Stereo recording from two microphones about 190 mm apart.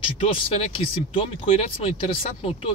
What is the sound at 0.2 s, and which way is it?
Speech, 30° left (ahead or behind).